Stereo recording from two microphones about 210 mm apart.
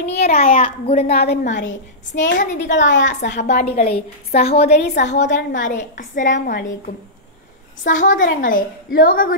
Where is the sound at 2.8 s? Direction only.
60° left (ahead or behind).